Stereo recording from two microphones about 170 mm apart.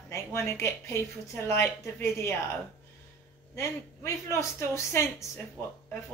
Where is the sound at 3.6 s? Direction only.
15° left (ahead or behind).